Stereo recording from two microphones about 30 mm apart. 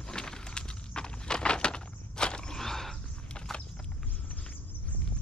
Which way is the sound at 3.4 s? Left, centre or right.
Left.